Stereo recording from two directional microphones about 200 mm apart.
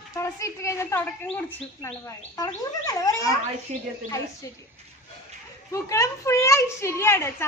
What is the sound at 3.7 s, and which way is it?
Speech, 35° right (ahead or behind).